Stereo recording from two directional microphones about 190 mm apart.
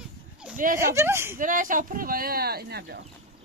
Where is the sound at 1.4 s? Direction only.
45° right (ahead or behind).